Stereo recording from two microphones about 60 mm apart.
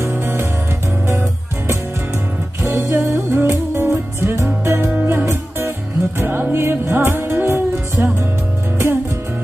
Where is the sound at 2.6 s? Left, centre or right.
Right.